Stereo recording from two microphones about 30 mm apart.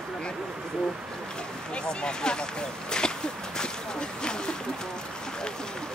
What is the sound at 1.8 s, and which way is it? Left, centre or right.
Speech, left.